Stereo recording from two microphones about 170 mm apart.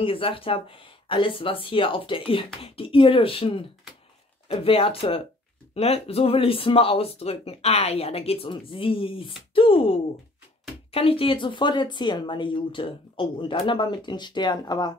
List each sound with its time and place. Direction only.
0.0 s speech: 30° left (ahead or behind)